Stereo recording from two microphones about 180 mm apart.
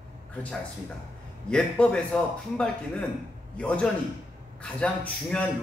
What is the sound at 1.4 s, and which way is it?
A man's voice, 5° left (ahead or behind).